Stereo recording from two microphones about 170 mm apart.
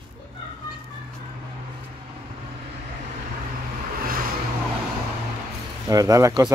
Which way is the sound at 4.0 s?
60° right (ahead or behind).